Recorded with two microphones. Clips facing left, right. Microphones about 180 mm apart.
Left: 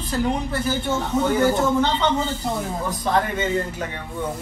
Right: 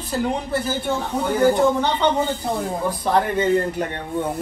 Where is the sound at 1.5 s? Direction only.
15° right (ahead or behind).